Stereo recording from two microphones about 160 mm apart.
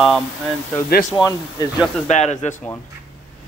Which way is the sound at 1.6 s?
25° left (ahead or behind).